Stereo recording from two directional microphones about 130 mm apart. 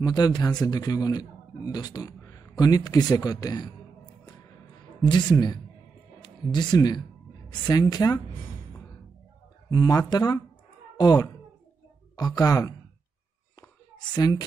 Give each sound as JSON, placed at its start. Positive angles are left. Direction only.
{"t": 0.0, "sound": "a man's voice", "side_deg": 30}
{"t": 5.0, "sound": "a man's voice", "side_deg": 35}
{"t": 9.7, "sound": "a man's voice", "side_deg": 30}
{"t": 13.6, "sound": "a sound", "side_deg": 30}